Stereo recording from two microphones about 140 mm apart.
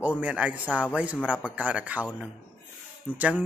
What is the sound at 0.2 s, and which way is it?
Speech, 10° right (ahead or behind).